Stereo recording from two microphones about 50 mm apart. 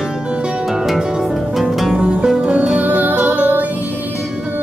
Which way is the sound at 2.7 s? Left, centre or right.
Right.